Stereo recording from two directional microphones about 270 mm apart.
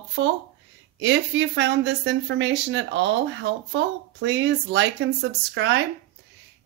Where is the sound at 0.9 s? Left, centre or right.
Right.